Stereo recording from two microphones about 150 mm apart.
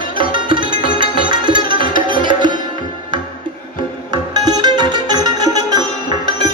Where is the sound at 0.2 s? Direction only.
30° right (ahead or behind).